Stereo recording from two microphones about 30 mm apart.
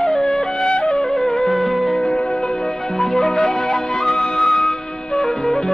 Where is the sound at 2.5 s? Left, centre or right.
Centre.